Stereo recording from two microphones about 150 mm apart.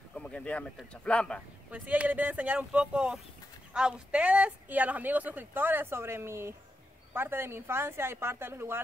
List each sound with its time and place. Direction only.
0.1 s speech: 5° left (ahead or behind)
1.7 s speech: 10° right (ahead or behind)